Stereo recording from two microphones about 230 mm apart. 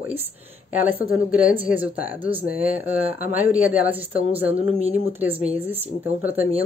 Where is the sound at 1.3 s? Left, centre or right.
Centre.